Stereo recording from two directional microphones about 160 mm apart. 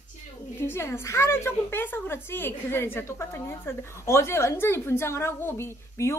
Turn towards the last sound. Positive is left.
turn(degrees=15)  # may be behind; listen again after turning